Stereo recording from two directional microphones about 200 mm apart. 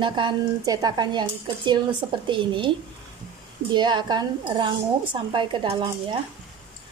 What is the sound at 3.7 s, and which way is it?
A woman's voice, 20° right (ahead or behind).